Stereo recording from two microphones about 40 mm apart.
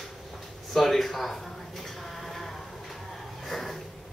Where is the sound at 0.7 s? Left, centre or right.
Centre.